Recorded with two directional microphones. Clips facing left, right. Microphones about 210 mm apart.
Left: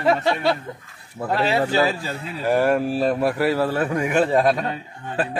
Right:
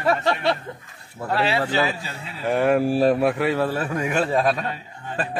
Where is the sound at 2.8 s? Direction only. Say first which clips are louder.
Right 2 dB; 10° right (ahead or behind).